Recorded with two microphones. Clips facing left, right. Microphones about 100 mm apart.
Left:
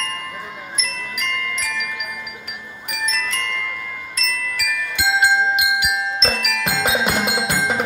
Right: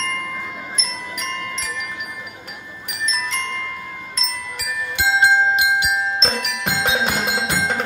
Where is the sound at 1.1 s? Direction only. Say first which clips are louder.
Left 2 dB; 30° right (ahead or behind).